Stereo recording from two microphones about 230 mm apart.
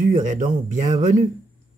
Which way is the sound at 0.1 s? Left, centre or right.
Right.